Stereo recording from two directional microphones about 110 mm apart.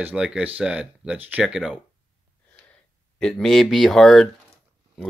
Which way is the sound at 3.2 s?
5° left (ahead or behind).